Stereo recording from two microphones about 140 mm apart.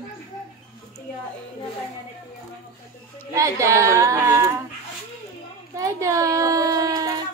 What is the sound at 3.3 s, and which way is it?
Speech, 20° right (ahead or behind).